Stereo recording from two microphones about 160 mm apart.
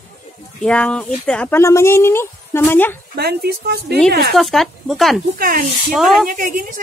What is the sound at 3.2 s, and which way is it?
Speech, 80° right.